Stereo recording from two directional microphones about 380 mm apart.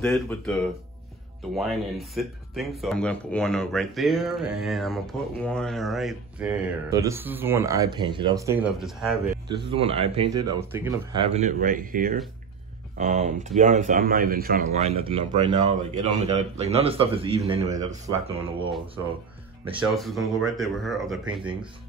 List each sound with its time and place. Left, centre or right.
0.0 s speech: centre
9.8 s speech: centre
19.9 s speech: centre
21.3 s speech: centre